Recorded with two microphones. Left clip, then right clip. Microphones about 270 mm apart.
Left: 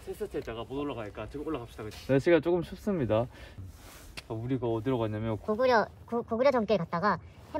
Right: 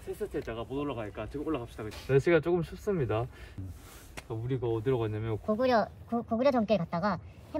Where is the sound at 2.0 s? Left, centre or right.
Left.